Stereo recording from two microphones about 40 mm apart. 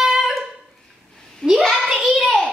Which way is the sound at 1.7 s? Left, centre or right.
Centre.